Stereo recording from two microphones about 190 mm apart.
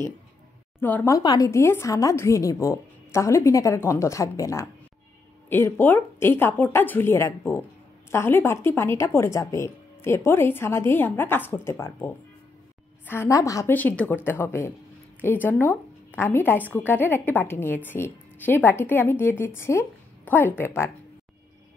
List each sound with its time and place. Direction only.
0.7 s a woman's voice: 10° left (ahead or behind)
13.0 s a woman's voice: 10° left (ahead or behind)